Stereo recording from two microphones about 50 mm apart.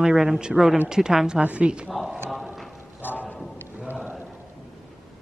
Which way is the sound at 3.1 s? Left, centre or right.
Right.